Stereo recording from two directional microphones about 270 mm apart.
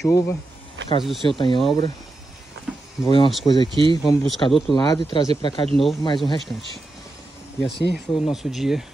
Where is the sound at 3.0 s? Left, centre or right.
Centre.